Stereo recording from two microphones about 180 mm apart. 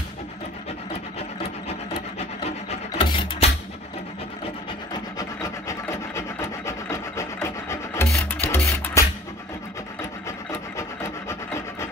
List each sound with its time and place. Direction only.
1.4 s wood: 30° left (ahead or behind)
4.9 s rub: 20° left (ahead or behind)
8.2 s music: 10° left (ahead or behind)
10.8 s rub: 15° left (ahead or behind)